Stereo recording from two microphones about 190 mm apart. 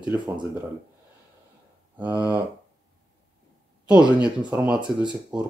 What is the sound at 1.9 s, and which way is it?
Speech, 15° right (ahead or behind).